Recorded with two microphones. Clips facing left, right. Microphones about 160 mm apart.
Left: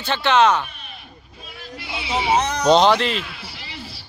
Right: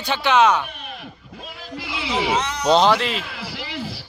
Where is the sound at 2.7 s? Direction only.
5° right (ahead or behind).